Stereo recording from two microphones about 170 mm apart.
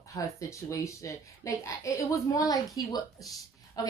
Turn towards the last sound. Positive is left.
turn(degrees=20)  # may be behind; listen again after turning